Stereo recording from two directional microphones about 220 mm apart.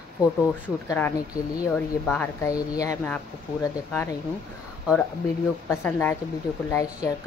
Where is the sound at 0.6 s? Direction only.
10° left (ahead or behind).